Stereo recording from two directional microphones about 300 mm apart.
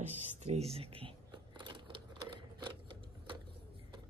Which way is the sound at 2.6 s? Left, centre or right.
Centre.